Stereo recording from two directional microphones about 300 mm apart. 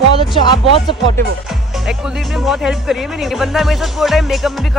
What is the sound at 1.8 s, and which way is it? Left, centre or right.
Speech, centre.